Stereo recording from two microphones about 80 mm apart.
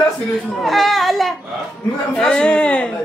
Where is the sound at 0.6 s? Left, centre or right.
Centre.